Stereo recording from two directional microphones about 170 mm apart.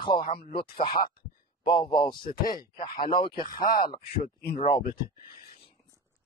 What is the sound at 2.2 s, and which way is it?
Speech, 60° left (ahead or behind).